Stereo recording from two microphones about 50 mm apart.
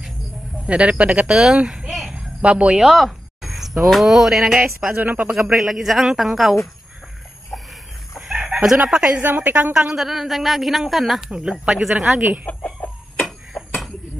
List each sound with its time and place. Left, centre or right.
0.7 s a man's voice: right
1.2 s speech: centre
1.9 s a sound: centre
2.1 s a sound: right
2.8 s speech: centre
4.9 s a woman's voice: right
5.5 s a woman's voice: centre
8.3 s chicken: centre
9.2 s a woman's voice: right
9.9 s a woman's voice: centre
11.2 s speech: centre
12.4 s chicken: left
13.5 s a sound: left